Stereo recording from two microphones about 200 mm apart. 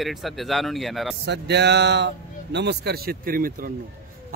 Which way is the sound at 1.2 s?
55° right (ahead or behind).